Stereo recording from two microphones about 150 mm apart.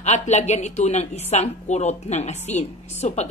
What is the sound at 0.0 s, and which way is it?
A woman's voice, 50° left (ahead or behind).